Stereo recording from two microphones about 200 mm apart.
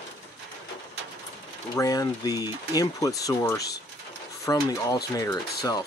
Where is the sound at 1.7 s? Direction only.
20° left (ahead or behind).